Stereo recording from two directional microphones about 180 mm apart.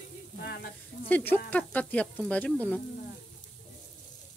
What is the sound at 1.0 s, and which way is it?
Speech, 10° left (ahead or behind).